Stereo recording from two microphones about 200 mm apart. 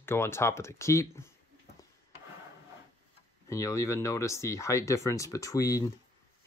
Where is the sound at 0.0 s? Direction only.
10° left (ahead or behind).